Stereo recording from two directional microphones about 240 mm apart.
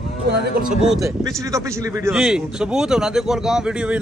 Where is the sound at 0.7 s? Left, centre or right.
Centre.